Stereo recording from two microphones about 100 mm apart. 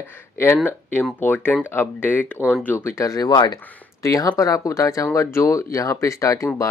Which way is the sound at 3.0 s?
35° left (ahead or behind).